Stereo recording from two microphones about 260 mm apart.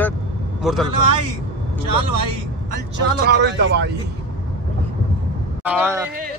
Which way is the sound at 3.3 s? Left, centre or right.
Right.